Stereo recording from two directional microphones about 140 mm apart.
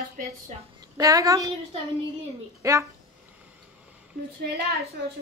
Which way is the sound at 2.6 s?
25° right (ahead or behind).